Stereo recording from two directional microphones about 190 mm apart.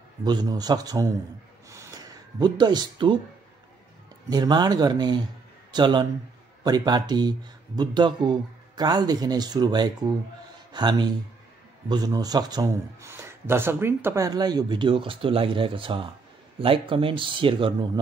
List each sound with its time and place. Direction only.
0.2 s a man's voice: 20° right (ahead or behind)
4.3 s a man's voice: 20° right (ahead or behind)